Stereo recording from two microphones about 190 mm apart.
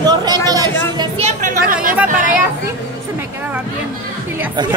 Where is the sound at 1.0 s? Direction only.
35° right (ahead or behind).